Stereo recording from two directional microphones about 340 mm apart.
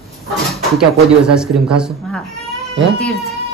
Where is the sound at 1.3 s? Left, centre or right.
Centre.